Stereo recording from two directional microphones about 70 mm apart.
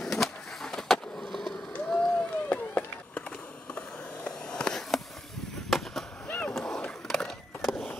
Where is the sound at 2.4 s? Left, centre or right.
Left.